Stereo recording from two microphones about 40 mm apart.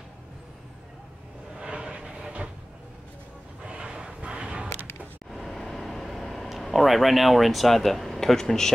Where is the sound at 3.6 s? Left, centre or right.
Right.